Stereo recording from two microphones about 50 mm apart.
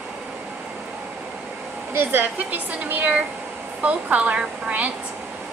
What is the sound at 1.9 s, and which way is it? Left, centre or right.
A woman's voice, right.